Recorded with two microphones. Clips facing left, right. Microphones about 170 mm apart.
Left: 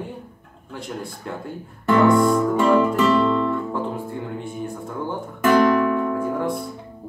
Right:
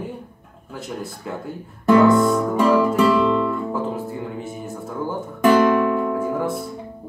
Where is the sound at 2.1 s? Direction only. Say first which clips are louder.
Even; centre (ahead or behind).